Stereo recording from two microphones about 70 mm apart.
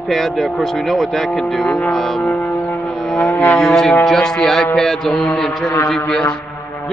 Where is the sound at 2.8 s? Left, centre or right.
Centre.